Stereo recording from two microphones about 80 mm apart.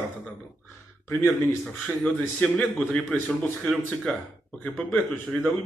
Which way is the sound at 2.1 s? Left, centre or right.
Centre.